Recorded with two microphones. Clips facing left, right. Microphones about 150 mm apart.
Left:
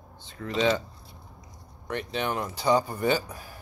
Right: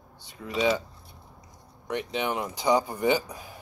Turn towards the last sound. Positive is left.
turn(degrees=-20)  # may be behind; listen again after turning